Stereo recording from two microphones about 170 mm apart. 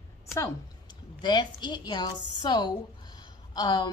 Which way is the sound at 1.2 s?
25° left (ahead or behind).